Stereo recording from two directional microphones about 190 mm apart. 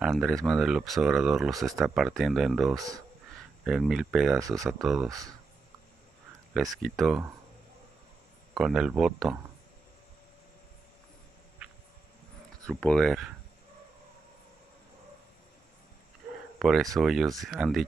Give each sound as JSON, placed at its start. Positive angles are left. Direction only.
{"t": 0.0, "sound": "speech", "side_deg": 0}
{"t": 4.4, "sound": "speech", "side_deg": -15}
{"t": 4.6, "sound": "speech", "side_deg": 0}
{"t": 6.5, "sound": "speech", "side_deg": 0}
{"t": 8.5, "sound": "speech", "side_deg": -5}
{"t": 12.6, "sound": "speech", "side_deg": 5}
{"t": 16.5, "sound": "a sound", "side_deg": 0}
{"t": 17.0, "sound": "speech", "side_deg": 0}